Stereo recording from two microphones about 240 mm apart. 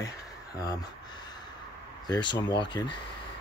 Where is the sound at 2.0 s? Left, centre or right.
Centre.